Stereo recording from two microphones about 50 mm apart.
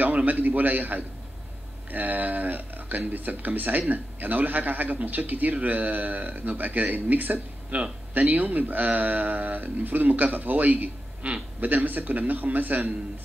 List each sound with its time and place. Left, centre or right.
0.0 s a man's voice: right